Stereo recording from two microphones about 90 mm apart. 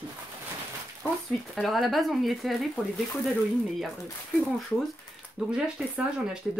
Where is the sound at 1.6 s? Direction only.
Centre (ahead or behind).